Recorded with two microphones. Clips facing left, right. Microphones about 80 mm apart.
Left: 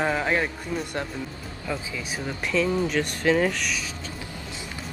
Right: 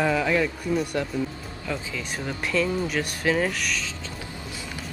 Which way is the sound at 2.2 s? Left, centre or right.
Centre.